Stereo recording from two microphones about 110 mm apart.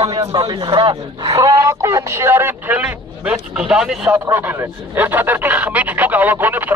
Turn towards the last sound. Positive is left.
turn(degrees=-15)  # may be behind; listen again after turning